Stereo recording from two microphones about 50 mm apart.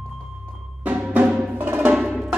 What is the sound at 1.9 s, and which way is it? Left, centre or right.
Music, centre.